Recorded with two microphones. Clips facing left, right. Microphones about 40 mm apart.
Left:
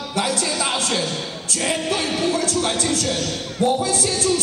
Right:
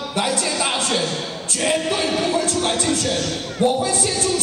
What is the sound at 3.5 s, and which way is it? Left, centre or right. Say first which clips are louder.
Speech: right 1 dB; right.